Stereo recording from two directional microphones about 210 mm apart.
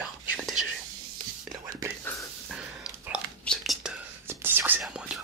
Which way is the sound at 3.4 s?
Centre (ahead or behind).